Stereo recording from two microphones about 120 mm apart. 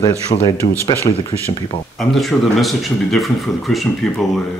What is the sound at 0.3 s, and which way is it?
Speech, 90° left.